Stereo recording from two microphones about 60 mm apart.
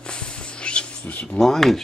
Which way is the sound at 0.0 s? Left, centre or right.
Centre.